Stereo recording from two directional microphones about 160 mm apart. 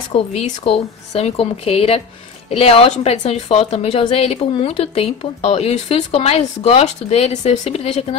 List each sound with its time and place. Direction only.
0.1 s speech: 40° left (ahead or behind)